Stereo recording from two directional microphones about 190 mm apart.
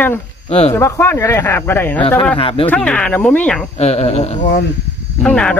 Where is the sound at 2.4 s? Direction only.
30° left (ahead or behind).